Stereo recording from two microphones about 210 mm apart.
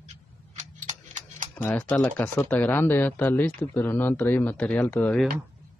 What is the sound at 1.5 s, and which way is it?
Speech, 10° left (ahead or behind).